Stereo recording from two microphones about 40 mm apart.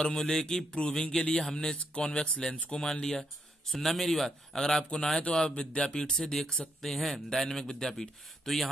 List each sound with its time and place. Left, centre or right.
0.0 s speech: centre